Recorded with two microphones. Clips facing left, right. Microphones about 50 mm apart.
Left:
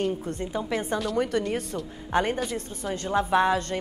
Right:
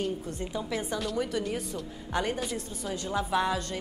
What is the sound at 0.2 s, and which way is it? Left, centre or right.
Speech, left.